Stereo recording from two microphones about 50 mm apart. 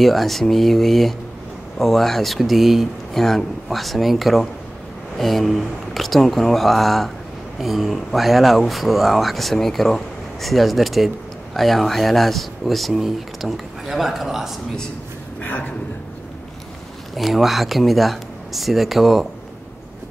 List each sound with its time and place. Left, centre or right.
0.0 s speech: centre
15.4 s a man's voice: left
17.1 s speech: centre